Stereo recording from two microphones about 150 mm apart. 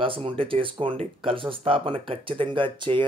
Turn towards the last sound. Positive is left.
turn(degrees=-35)  # may be behind; listen again after turning